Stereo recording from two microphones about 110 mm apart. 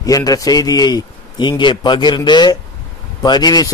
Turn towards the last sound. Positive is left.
turn(degrees=40)  # may be behind; listen again after turning